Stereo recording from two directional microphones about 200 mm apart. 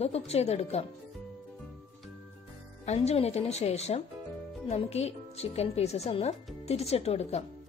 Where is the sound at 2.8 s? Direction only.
35° left (ahead or behind).